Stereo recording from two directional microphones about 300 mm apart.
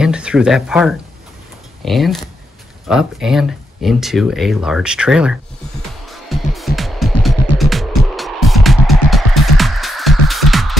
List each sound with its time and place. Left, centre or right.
0.0 s speech: centre
6.0 s music: centre
7.5 s music: left
8.1 s music: centre